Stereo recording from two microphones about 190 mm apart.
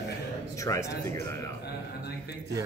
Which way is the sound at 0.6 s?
15° left (ahead or behind).